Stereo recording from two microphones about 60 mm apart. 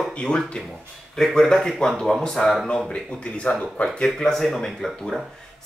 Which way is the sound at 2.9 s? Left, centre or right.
Centre.